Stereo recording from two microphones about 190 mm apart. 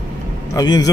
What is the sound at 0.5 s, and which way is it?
Speech, 20° left (ahead or behind).